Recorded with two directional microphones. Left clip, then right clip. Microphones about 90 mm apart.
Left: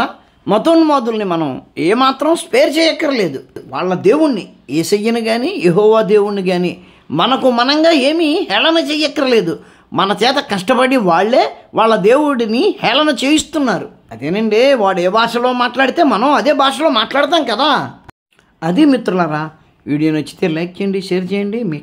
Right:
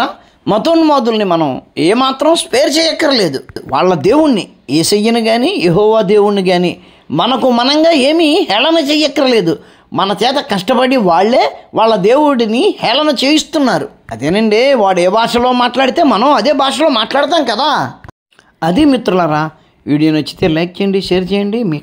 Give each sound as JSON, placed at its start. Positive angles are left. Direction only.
{"t": 0.5, "sound": "a woman's voice", "side_deg": -20}
{"t": 2.0, "sound": "speech", "side_deg": -5}
{"t": 3.0, "sound": "a woman's voice", "side_deg": -25}
{"t": 3.7, "sound": "speech", "side_deg": -40}
{"t": 4.8, "sound": "a woman's voice", "side_deg": -25}
{"t": 7.2, "sound": "speech", "side_deg": -10}
{"t": 7.5, "sound": "a woman's voice", "side_deg": -30}
{"t": 9.9, "sound": "speech", "side_deg": 0}
{"t": 11.1, "sound": "a woman's voice", "side_deg": -15}
{"t": 11.7, "sound": "speech", "side_deg": -5}
{"t": 13.7, "sound": "a woman's voice", "side_deg": -20}
{"t": 17.6, "sound": "a woman's voice", "side_deg": -20}
{"t": 20.0, "sound": "speech", "side_deg": -10}